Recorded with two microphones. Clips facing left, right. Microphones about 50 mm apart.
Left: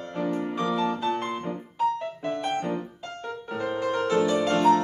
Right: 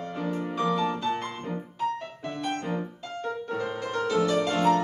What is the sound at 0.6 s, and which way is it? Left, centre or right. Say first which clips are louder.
Music: right 1 dB; centre.